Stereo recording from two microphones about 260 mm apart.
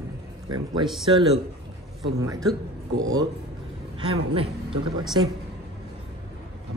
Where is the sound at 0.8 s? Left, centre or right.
Centre.